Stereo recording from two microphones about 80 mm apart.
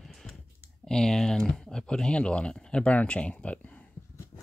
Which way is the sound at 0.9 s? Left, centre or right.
Centre.